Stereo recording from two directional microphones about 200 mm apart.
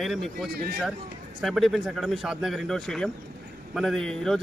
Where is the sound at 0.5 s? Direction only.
50° right (ahead or behind).